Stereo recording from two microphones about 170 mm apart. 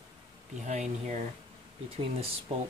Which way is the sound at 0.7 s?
40° right (ahead or behind).